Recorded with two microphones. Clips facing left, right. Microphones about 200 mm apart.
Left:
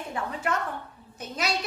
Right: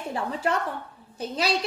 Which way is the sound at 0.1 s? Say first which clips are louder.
Right 3 dB; 30° right (ahead or behind).